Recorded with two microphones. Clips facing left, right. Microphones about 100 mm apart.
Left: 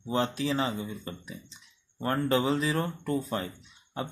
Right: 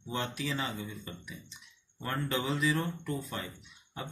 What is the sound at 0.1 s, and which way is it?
Speech, 30° left (ahead or behind).